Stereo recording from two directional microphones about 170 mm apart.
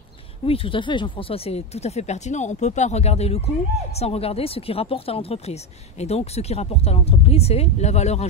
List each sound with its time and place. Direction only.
0.5 s speech: 30° left (ahead or behind)